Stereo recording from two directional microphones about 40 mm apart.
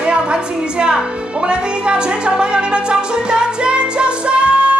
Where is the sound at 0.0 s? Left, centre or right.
Right.